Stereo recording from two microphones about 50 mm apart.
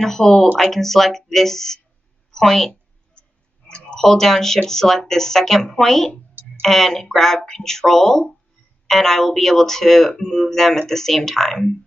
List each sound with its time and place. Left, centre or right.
0.0 s a woman's voice: centre
2.7 s clicking: left
4.0 s speech: centre